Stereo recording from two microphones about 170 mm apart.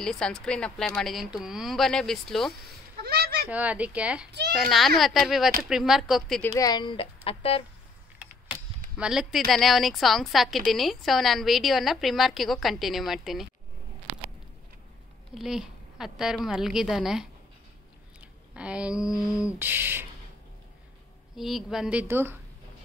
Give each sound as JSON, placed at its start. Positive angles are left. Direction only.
{"t": 0.0, "sound": "a woman's voice", "side_deg": 5}
{"t": 3.0, "sound": "a sound", "side_deg": -70}
{"t": 3.4, "sound": "a woman's voice", "side_deg": -10}
{"t": 6.5, "sound": "speech", "side_deg": 25}
{"t": 8.2, "sound": "power windows", "side_deg": -10}
{"t": 8.9, "sound": "a woman's voice", "side_deg": -5}
{"t": 15.3, "sound": "a woman's voice", "side_deg": -5}
{"t": 18.5, "sound": "speech", "side_deg": -5}
{"t": 21.4, "sound": "speech", "side_deg": 0}